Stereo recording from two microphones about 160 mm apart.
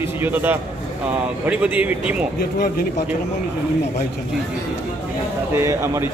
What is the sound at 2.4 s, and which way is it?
Speech, 75° left (ahead or behind).